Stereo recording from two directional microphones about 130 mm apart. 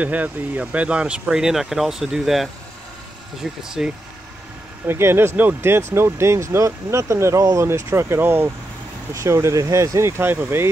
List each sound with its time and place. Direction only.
0.0 s speech: 10° right (ahead or behind)
4.8 s speech: 20° right (ahead or behind)